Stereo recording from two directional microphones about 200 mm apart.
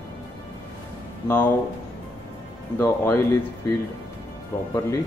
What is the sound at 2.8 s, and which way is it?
Speech, 15° left (ahead or behind).